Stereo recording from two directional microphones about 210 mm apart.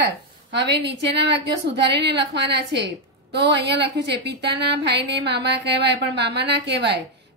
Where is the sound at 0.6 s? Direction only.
55° right (ahead or behind).